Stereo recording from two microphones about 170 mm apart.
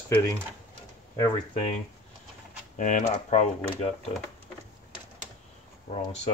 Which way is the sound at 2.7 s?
50° left (ahead or behind).